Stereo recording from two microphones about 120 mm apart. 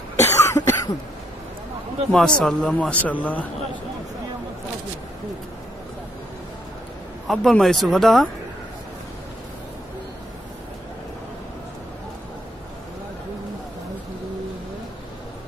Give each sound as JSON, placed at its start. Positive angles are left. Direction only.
{"t": 0.1, "sound": "cough", "side_deg": 25}
{"t": 2.1, "sound": "speech", "side_deg": 5}
{"t": 7.2, "sound": "speech", "side_deg": 0}